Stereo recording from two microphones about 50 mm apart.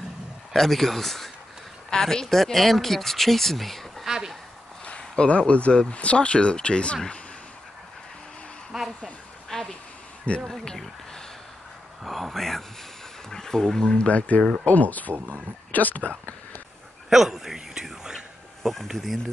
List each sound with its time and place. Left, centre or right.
0.5 s speech: centre
4.8 s speech: left
8.7 s speech: centre
9.5 s a sound: centre
10.5 s speech: centre
12.0 s speech: centre
14.0 s speech: left
15.1 s speech: right
15.7 s speech: left
17.1 s whispering: centre
18.6 s speech: centre